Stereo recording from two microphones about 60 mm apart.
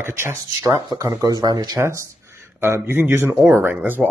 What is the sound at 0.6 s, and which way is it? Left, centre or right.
Speech, right.